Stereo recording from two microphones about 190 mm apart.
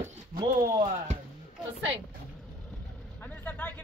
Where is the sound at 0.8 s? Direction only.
40° right (ahead or behind).